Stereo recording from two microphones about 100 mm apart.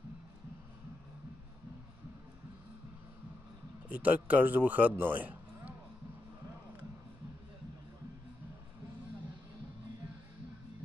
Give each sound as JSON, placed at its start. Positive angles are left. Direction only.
{"t": 3.9, "sound": "a man's voice", "side_deg": -15}